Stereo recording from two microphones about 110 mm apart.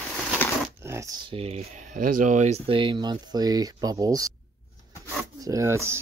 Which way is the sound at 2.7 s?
45° right (ahead or behind).